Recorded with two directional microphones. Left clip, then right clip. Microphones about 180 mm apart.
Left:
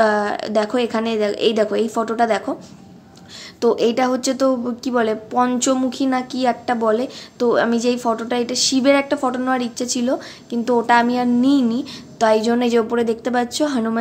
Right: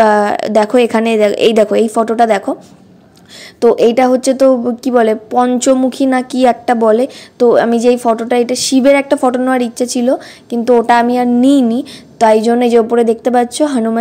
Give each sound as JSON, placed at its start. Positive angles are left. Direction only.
{"t": 0.0, "sound": "a woman's voice", "side_deg": -45}
{"t": 3.6, "sound": "a woman's voice", "side_deg": -40}